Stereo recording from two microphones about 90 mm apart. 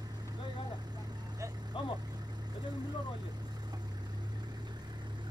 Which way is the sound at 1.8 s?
70° left (ahead or behind).